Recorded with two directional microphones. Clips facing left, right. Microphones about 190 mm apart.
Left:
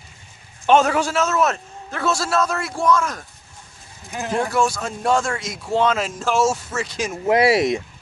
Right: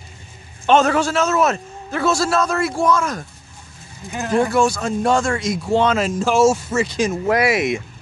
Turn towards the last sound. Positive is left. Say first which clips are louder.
# left 1 dB
turn(degrees=35)  # may be behind; listen again after turning